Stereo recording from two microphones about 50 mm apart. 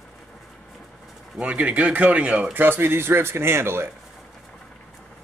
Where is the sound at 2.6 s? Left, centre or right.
Right.